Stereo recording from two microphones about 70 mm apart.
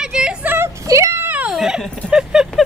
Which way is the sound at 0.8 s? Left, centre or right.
Right.